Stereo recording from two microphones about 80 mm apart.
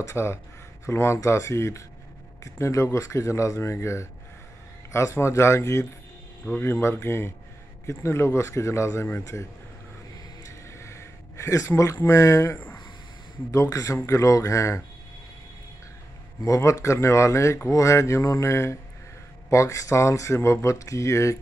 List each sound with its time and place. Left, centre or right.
0.0 s speech: left
6.5 s speech: left
10.4 s a sound: left
12.1 s a man's voice: left
16.4 s speech: left